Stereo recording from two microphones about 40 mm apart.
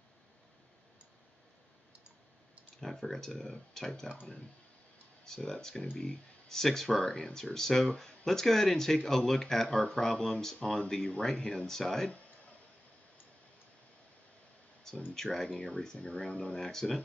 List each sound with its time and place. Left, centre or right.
2.8 s speech: centre
5.2 s speech: centre
7.5 s speech: centre
10.9 s speech: left
15.1 s speech: centre